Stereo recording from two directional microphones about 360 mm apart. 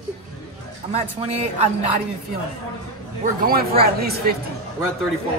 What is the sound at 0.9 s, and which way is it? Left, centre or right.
Speech, centre.